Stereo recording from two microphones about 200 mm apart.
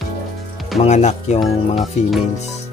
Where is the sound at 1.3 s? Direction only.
Centre (ahead or behind).